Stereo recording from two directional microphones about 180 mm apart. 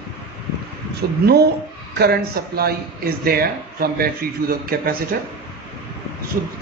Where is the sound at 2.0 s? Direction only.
60° right (ahead or behind).